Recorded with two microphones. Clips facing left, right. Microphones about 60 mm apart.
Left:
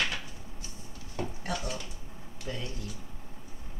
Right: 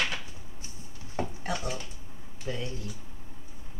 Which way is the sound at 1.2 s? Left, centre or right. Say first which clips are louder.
Right 2 dB; right.